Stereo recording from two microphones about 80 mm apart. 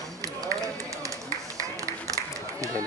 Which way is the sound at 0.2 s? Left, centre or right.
Right.